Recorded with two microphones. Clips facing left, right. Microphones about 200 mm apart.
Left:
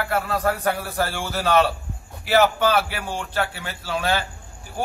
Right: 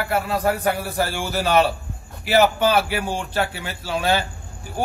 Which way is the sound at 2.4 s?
20° right (ahead or behind).